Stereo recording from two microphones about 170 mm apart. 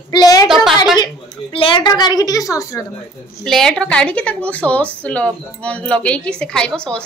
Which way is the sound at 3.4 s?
5° left (ahead or behind).